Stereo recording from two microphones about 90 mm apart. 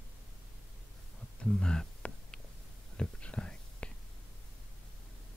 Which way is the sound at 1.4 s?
10° left (ahead or behind).